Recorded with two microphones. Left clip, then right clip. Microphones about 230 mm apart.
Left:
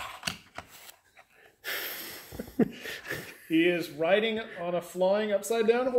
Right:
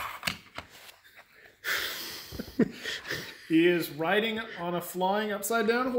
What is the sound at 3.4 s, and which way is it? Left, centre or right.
Speech, right.